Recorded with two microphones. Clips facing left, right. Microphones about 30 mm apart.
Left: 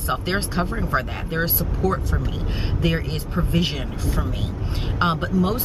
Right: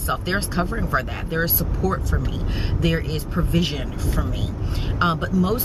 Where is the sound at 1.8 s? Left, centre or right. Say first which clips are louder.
Left 1 dB; left.